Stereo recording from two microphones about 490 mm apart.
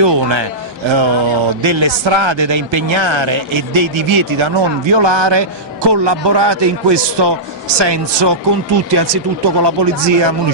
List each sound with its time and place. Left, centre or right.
0.0 s a man's voice: right